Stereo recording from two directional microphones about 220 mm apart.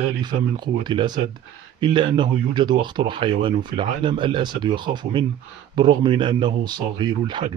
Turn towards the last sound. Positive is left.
turn(degrees=-20)  # may be behind; listen again after turning